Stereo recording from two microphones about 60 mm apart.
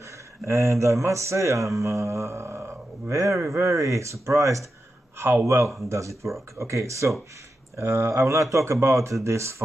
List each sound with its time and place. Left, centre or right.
0.5 s speech: right
3.5 s speech: right
7.7 s speech: right